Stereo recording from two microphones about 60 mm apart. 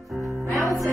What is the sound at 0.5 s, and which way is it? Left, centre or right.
Music, right.